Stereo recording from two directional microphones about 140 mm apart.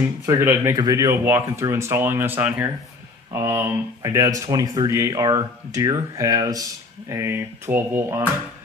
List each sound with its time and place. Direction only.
0.0 s speech: 15° right (ahead or behind)